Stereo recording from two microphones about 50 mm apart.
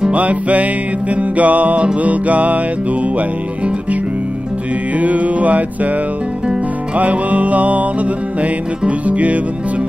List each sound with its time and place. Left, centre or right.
0.1 s music: right
5.0 s music: right
7.0 s music: right